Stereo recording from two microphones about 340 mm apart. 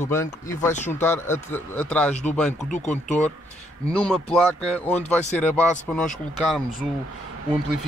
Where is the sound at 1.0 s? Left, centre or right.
Centre.